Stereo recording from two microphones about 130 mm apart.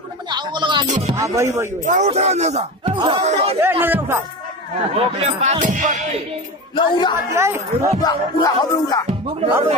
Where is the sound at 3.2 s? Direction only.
55° right (ahead or behind).